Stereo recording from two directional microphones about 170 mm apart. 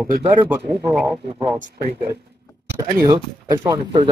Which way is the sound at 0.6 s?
30° right (ahead or behind).